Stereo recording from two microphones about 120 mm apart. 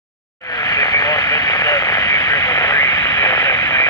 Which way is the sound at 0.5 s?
35° left (ahead or behind).